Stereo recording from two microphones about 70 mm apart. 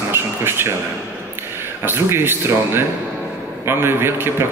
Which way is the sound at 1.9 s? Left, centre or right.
Right.